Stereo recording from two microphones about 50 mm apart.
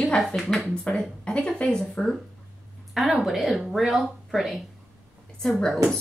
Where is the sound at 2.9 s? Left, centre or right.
Centre.